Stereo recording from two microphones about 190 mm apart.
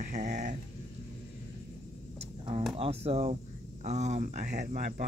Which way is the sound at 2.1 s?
30° right (ahead or behind).